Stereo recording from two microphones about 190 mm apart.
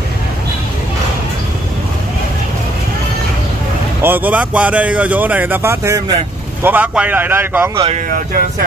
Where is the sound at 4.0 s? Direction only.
10° right (ahead or behind).